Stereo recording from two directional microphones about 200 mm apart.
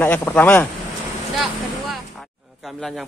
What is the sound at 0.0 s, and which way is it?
Speech, 10° left (ahead or behind).